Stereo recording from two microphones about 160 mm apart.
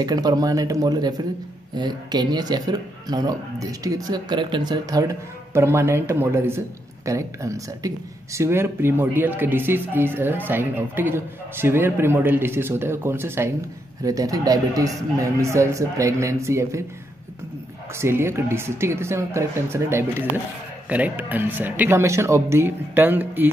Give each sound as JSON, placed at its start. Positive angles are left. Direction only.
{"t": 0.0, "sound": "speech", "side_deg": -25}
{"t": 17.9, "sound": "speech", "side_deg": -15}